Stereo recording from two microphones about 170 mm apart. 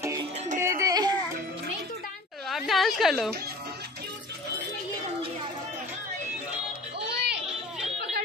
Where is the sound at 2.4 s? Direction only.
Centre (ahead or behind).